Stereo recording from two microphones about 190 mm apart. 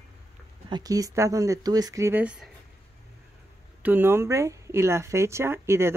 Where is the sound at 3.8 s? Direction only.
10° right (ahead or behind).